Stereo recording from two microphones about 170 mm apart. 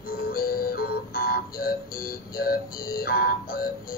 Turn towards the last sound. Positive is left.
turn(degrees=60)  # may be behind; listen again after turning